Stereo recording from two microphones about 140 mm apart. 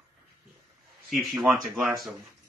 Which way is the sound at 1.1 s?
5° right (ahead or behind).